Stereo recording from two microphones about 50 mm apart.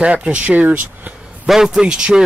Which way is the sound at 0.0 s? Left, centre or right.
Right.